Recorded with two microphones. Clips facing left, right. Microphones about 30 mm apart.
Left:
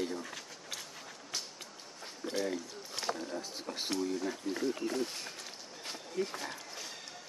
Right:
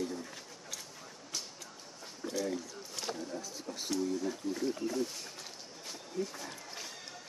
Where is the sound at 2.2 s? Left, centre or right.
Left.